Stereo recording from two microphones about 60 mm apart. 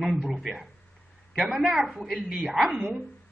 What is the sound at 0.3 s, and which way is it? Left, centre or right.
A woman's voice, centre.